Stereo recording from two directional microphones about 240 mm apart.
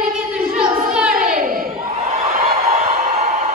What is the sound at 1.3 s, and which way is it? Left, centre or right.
Crowd, right.